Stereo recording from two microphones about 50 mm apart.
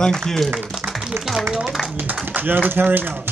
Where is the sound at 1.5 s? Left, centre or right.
Centre.